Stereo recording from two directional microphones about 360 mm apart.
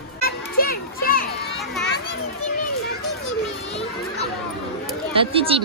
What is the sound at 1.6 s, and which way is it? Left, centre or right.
Children playing, centre.